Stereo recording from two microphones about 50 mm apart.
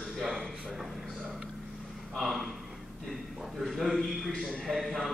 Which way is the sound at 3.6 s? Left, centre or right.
Centre.